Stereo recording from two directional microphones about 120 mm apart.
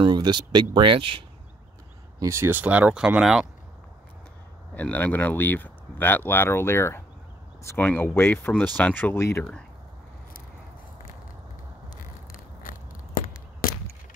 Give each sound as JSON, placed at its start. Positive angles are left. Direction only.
{"t": 0.0, "sound": "speech", "side_deg": -40}
{"t": 2.1, "sound": "speech", "side_deg": -20}
{"t": 4.7, "sound": "speech", "side_deg": 15}